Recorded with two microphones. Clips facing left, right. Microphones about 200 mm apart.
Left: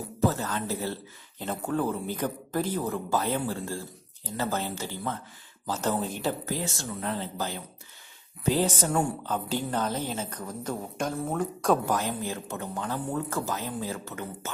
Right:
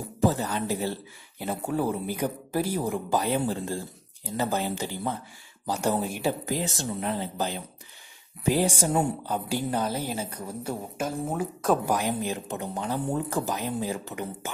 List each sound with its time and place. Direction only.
0.2 s a woman's voice: 15° right (ahead or behind)